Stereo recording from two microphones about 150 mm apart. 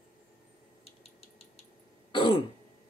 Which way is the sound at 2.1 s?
35° left (ahead or behind).